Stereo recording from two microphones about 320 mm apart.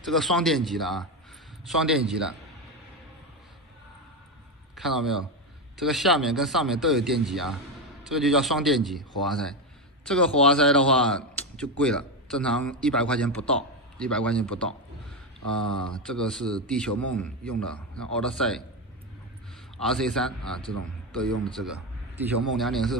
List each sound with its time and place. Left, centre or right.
0.0 s a man's voice: centre
4.7 s a man's voice: centre
15.8 s a man's voice: centre
16.9 s a man's voice: right
18.1 s a man's voice: centre
19.8 s a man's voice: centre